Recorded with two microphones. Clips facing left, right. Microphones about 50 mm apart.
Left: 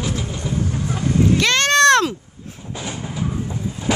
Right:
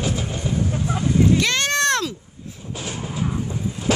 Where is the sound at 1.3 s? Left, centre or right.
Left.